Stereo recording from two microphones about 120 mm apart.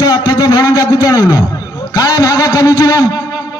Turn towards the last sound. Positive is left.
turn(degrees=30)  # may be behind; listen again after turning